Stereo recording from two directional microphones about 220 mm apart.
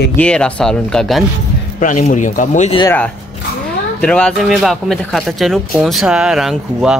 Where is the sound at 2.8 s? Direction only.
10° left (ahead or behind).